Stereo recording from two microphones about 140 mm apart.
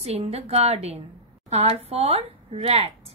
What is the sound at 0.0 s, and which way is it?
A woman's voice, 45° right (ahead or behind).